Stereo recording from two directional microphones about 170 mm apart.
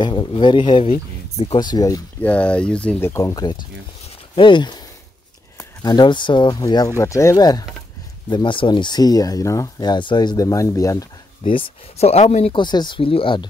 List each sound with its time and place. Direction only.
0.0 s speech: 25° left (ahead or behind)
1.6 s speech: 25° left (ahead or behind)
2.2 s speech: 10° left (ahead or behind); by 13.5 s 30° left (ahead or behind)